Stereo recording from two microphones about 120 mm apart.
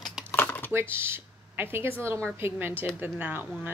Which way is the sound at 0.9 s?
20° right (ahead or behind).